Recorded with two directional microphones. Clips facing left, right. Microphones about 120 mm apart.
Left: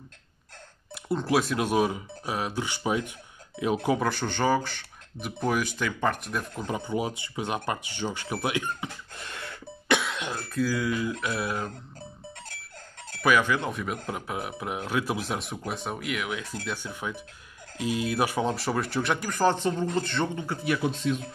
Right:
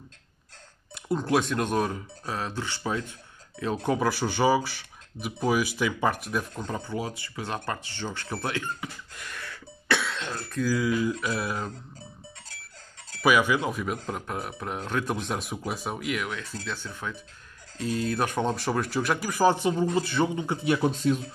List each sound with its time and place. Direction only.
0.9 s speech: centre (ahead or behind)
3.9 s speech: 5° right (ahead or behind)
6.5 s speech: 10° left (ahead or behind)
10.5 s speech: centre (ahead or behind)
13.2 s speech: 10° right (ahead or behind)
20.4 s speech: 25° right (ahead or behind)
20.8 s a man's voice: 40° right (ahead or behind)